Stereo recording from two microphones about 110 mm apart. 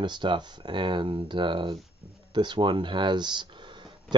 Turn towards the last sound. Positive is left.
turn(degrees=-45)  # may be behind; listen again after turning